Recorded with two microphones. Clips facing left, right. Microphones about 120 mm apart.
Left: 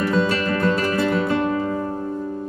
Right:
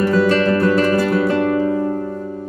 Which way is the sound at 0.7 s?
35° right (ahead or behind).